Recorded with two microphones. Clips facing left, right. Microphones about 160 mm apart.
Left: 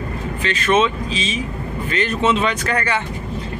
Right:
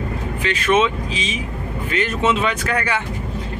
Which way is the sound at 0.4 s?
10° right (ahead or behind).